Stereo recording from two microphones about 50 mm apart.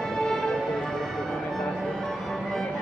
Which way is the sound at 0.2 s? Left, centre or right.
Centre.